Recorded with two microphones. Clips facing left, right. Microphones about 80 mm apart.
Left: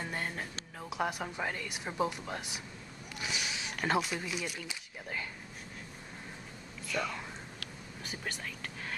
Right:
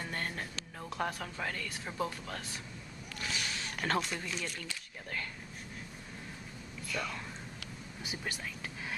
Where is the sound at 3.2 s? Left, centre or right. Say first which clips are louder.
Left 1 dB; centre.